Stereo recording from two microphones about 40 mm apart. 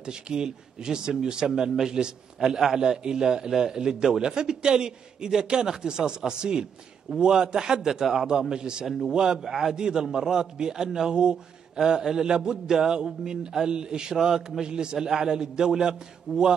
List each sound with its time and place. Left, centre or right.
0.0 s a man's voice: centre
8.8 s a man's voice: centre
9.1 s a man's voice: centre
14.1 s a man's voice: centre